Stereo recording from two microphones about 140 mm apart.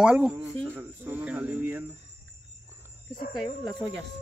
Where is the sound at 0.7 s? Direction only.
10° right (ahead or behind).